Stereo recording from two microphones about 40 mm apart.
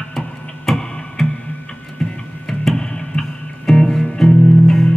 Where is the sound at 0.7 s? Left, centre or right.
Centre.